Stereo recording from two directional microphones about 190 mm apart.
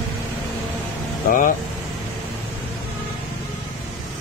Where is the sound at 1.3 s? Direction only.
45° left (ahead or behind).